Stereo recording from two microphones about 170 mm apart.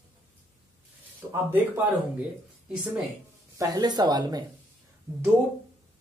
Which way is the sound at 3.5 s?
20° right (ahead or behind).